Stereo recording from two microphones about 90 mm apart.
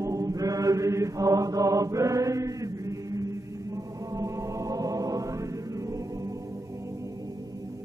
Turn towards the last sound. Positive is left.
turn(degrees=-35)  # may be behind; listen again after turning